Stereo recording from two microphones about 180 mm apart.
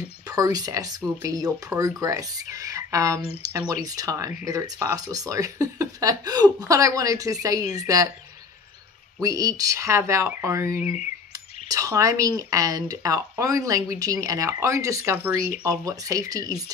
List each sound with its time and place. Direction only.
0.3 s speech: 20° right (ahead or behind)
9.2 s speech: 20° right (ahead or behind)